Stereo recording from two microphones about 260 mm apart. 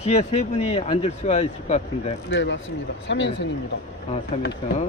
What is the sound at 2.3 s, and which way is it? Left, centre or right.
Speech, left.